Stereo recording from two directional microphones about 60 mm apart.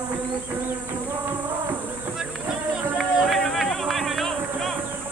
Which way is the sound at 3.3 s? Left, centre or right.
Centre.